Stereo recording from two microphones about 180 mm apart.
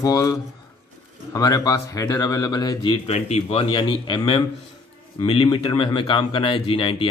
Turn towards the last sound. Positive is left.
turn(degrees=30)  # may be behind; listen again after turning